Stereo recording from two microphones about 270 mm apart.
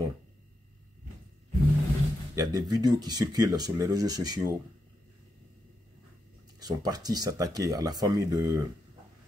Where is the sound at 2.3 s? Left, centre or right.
Centre.